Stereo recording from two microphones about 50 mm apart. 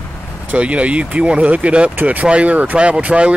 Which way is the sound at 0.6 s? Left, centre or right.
Right.